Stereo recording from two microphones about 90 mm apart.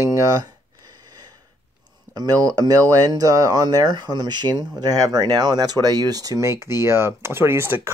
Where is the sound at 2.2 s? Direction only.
40° right (ahead or behind).